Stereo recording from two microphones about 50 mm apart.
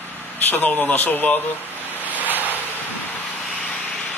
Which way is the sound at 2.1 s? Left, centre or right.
Right.